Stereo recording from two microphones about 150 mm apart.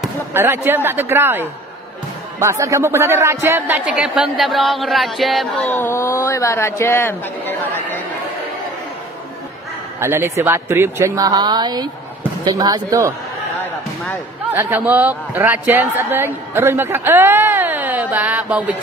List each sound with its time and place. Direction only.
0.3 s speech: 15° right (ahead or behind); by 5.5 s centre (ahead or behind)
5.7 s a man's voice: 15° left (ahead or behind)
9.9 s speech: 15° right (ahead or behind)
14.5 s speech: 15° right (ahead or behind)